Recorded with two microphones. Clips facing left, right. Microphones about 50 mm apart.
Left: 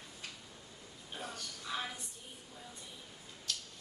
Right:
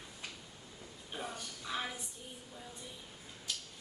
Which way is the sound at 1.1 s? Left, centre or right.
Centre.